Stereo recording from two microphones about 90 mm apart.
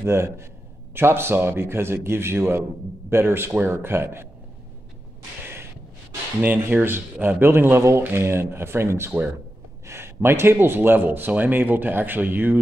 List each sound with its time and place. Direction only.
0.0 s speech: 30° right (ahead or behind)
5.4 s a sound: 25° right (ahead or behind)
6.4 s speech: 20° right (ahead or behind)